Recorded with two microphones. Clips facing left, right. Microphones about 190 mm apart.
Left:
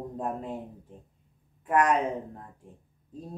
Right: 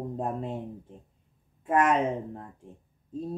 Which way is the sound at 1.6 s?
25° right (ahead or behind).